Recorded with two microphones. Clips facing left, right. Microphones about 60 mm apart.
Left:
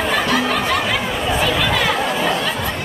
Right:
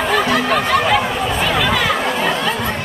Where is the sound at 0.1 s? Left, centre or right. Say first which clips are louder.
Right 3 dB; centre.